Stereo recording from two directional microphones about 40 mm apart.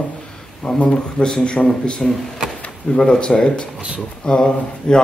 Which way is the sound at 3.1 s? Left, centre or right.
Centre.